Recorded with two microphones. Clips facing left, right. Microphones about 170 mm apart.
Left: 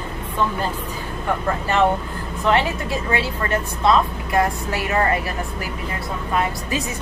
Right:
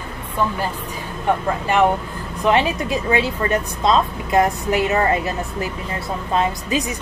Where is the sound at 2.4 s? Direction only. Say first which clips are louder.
Right 2 dB; 20° right (ahead or behind).